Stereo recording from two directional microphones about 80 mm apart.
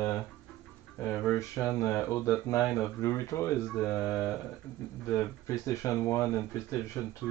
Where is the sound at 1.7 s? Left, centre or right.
Left.